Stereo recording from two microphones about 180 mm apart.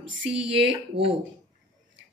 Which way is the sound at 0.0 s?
90° right.